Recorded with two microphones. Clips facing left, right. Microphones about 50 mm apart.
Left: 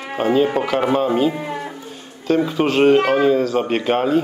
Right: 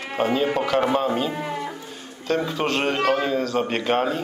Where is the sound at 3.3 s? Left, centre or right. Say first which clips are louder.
Left 6 dB; centre.